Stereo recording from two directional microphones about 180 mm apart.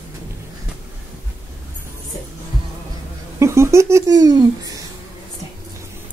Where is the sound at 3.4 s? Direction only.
15° right (ahead or behind).